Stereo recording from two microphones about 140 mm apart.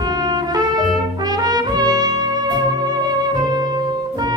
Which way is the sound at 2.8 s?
30° right (ahead or behind).